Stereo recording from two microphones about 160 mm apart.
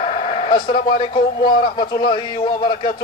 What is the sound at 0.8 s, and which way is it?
A man's voice, 30° left (ahead or behind).